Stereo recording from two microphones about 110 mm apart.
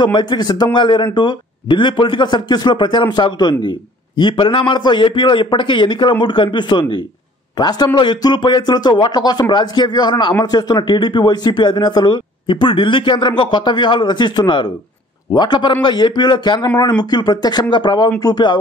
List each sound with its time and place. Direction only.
0.0 s speech: 45° left (ahead or behind)